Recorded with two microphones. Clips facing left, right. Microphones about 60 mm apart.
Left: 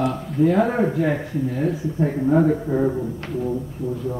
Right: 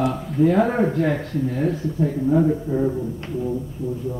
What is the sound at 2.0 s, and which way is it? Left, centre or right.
Speech, left.